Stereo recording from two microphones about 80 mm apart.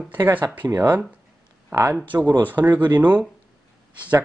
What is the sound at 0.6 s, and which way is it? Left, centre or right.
Speech, centre.